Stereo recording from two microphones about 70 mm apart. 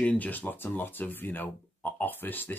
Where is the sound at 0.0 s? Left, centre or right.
Centre.